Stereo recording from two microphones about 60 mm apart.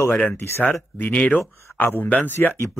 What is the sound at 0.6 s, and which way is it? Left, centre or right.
Speech, left.